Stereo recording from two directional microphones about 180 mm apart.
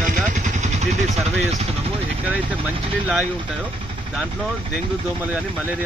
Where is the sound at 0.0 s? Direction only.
45° right (ahead or behind).